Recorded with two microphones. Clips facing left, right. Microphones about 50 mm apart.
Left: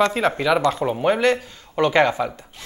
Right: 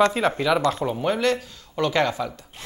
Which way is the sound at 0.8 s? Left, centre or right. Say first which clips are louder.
Left 4 dB; centre.